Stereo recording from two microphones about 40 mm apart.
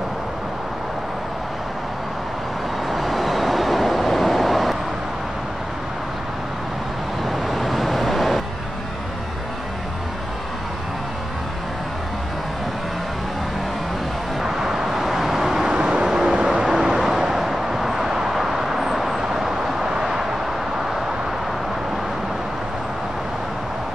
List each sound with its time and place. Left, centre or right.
2.9 s vehicle: centre
7.2 s vehicle: centre
14.4 s vehicle: centre
15.7 s vehicle: right